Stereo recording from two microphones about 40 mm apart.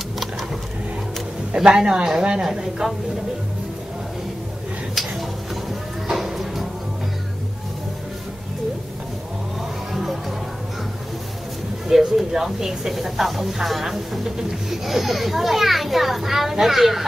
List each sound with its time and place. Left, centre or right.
1.5 s speech: centre
2.4 s speech: centre
6.1 s music: centre
11.9 s speech: centre